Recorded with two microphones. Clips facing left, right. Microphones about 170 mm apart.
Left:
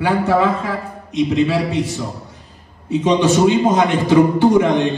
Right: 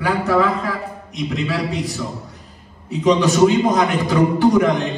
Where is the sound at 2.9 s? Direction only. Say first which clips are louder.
Left 1 dB; 30° left (ahead or behind).